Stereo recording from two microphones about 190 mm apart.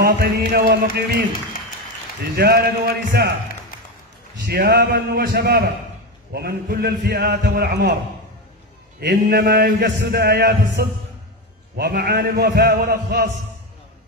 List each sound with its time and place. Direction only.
0.0 s music: 55° right (ahead or behind)
2.3 s a man's voice: 55° right (ahead or behind)
4.5 s music: 55° right (ahead or behind)
6.3 s a man's voice: 55° right (ahead or behind)
9.0 s a man's voice: 55° right (ahead or behind)